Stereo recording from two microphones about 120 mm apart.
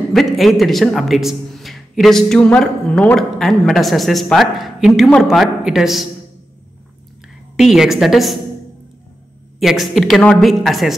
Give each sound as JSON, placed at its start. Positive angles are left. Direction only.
{"t": 0.1, "sound": "a man's voice", "side_deg": 0}
{"t": 7.5, "sound": "a man's voice", "side_deg": -5}
{"t": 9.6, "sound": "a man's voice", "side_deg": 0}